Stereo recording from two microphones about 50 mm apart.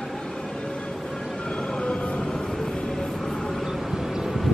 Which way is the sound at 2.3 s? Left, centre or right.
Centre.